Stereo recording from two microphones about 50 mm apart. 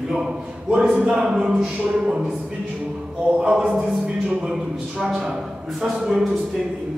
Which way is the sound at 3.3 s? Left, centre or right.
Centre.